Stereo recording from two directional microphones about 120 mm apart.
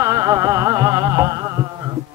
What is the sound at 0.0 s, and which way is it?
Music, 30° right (ahead or behind).